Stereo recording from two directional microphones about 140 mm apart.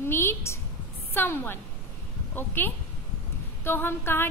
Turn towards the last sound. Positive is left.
turn(degrees=15)  # may be behind; listen again after turning